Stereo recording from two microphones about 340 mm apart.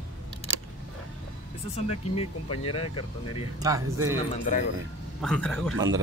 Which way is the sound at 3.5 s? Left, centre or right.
Centre.